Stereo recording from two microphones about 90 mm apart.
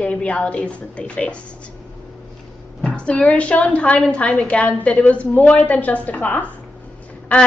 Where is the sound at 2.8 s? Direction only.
10° left (ahead or behind).